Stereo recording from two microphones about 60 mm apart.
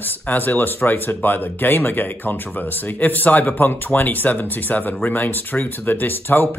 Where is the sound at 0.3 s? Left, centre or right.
Left.